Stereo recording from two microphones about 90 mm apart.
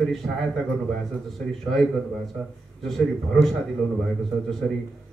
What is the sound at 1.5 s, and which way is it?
A man's voice, 5° left (ahead or behind).